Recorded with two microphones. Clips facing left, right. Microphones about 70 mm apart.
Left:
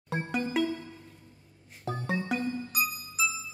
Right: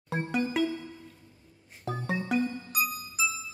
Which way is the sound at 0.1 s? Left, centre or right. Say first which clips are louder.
Right 1 dB; centre.